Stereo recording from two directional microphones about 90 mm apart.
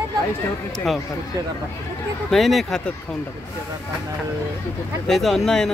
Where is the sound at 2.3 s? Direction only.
Centre (ahead or behind).